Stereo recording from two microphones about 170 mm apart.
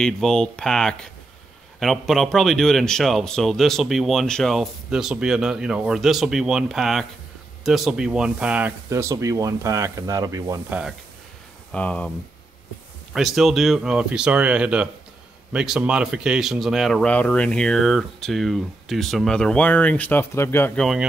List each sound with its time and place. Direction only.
0.0 s a man's voice: 5° left (ahead or behind); by 10.6 s 20° right (ahead or behind)
10.7 s a man's voice: 5° right (ahead or behind)
11.7 s speech: 10° left (ahead or behind)
13.1 s a man's voice: centre (ahead or behind)